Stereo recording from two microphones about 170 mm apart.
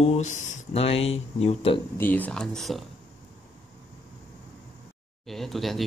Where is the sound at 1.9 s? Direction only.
10° left (ahead or behind).